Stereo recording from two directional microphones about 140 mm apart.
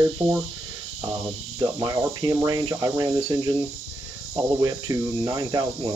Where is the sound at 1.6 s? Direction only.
25° right (ahead or behind).